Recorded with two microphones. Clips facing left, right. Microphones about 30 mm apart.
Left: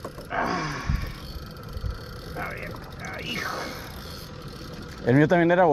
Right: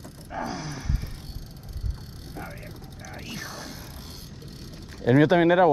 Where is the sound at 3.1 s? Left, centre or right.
Left.